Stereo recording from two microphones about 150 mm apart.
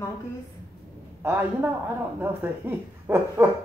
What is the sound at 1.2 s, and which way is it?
Speech, 15° right (ahead or behind).